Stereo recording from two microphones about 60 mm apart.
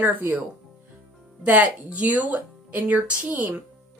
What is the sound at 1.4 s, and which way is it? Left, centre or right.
Speech, right.